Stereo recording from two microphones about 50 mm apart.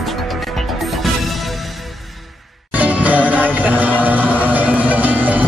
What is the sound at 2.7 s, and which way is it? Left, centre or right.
Music, right.